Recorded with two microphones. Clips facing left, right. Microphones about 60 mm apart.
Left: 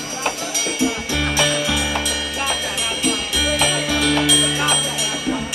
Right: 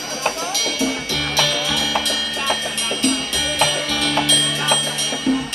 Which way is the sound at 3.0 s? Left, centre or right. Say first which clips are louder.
Right 1 dB; centre.